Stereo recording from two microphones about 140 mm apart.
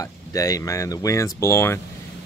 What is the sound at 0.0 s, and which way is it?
Speech, 25° left (ahead or behind).